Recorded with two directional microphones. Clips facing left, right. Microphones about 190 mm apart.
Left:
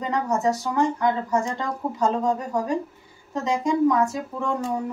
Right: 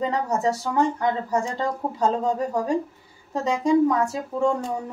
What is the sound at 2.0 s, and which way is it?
Speech, 30° right (ahead or behind).